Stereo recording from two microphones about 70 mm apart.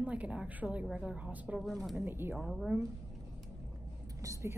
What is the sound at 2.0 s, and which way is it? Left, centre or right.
Speech, right.